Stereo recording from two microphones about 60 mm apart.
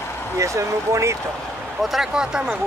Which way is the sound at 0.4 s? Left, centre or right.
Right.